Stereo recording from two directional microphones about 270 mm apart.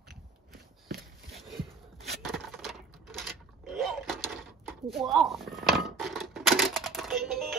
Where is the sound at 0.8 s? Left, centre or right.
Right.